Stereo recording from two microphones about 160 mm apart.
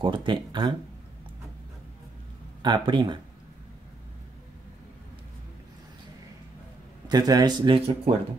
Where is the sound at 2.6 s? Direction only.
30° right (ahead or behind).